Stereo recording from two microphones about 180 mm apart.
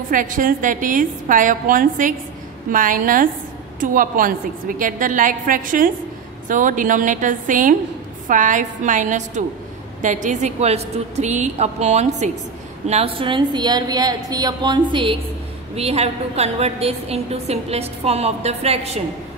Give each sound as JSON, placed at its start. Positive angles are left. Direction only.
{"t": 0.1, "sound": "a woman's voice", "side_deg": -50}